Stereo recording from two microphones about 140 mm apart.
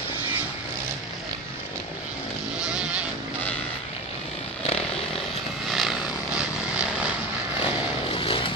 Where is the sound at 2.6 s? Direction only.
5° right (ahead or behind).